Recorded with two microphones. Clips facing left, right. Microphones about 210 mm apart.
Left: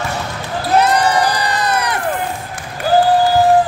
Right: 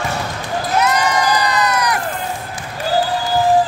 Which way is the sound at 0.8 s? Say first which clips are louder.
Left 3 dB; 30° left (ahead or behind).